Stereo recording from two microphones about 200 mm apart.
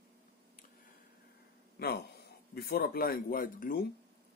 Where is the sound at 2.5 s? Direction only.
50° left (ahead or behind).